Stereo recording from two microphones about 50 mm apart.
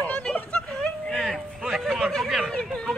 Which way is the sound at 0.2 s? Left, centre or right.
Left.